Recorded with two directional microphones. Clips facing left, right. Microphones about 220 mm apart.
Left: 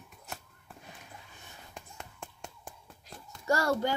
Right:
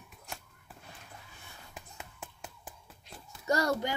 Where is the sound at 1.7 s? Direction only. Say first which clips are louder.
Left 1 dB; 5° right (ahead or behind).